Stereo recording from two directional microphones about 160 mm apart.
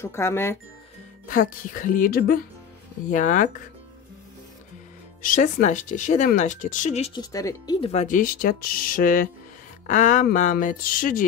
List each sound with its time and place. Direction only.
0.0 s speech: 15° left (ahead or behind)
1.2 s speech: 60° left (ahead or behind)
3.1 s speech: 55° left (ahead or behind)
5.2 s speech: 55° left (ahead or behind)
7.2 s speech: 25° left (ahead or behind)
7.8 s speech: 45° left (ahead or behind); by 11.2 s 60° left (ahead or behind)